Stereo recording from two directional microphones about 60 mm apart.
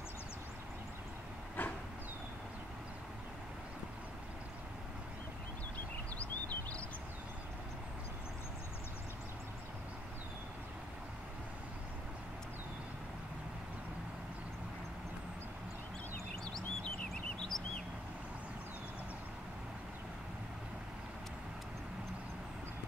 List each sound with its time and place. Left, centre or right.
1.6 s vehicle: left
6.1 s a sound: left
16.5 s bird: centre